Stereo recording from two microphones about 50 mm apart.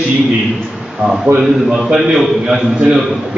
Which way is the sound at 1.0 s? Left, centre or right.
Centre.